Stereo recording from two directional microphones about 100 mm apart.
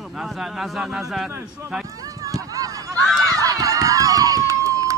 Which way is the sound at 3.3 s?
35° right (ahead or behind).